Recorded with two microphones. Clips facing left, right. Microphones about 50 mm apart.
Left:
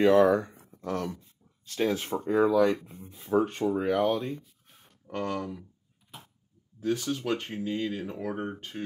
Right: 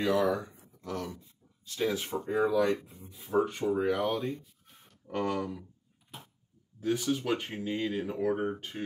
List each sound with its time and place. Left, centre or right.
0.0 s speech: left
4.4 s a sound: centre
5.1 s speech: centre
6.1 s tick-tock: centre
6.8 s speech: centre